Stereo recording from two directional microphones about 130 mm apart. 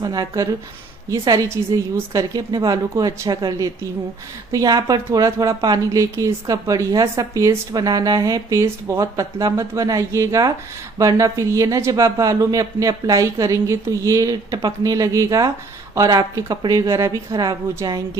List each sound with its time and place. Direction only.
0.0 s speech: 30° right (ahead or behind)